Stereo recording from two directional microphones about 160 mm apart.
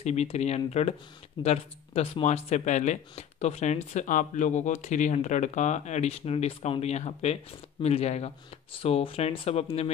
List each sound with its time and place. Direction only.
0.0 s speech: 45° left (ahead or behind)